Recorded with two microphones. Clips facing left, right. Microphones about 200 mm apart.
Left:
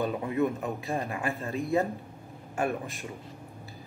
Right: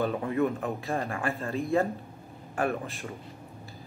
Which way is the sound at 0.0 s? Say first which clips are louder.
Right 1 dB; 15° left (ahead or behind).